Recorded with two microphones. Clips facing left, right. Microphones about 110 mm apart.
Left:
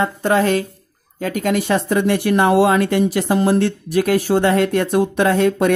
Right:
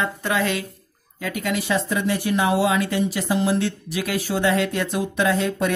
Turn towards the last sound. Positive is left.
turn(degrees=50)  # may be behind; listen again after turning